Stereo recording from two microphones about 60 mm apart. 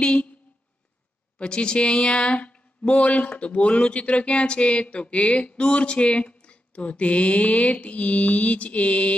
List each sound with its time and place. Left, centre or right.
0.0 s speech: centre
1.4 s speech: centre